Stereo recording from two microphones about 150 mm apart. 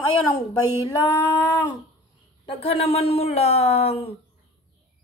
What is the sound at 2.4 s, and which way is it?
Speech, 40° left (ahead or behind).